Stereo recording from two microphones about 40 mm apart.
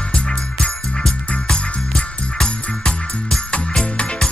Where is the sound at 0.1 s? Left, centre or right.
Left.